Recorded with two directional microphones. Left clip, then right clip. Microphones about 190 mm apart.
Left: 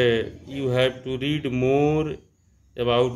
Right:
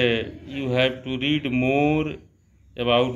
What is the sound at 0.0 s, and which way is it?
Mantra, 45° left (ahead or behind).